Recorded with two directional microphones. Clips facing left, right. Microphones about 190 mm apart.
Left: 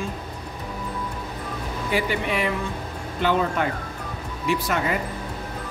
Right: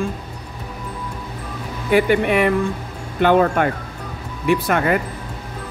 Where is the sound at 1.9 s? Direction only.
60° right (ahead or behind).